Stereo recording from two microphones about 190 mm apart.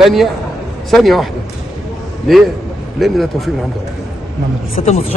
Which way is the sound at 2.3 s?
Centre (ahead or behind).